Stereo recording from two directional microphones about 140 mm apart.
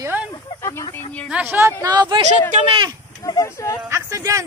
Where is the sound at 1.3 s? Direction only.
15° right (ahead or behind).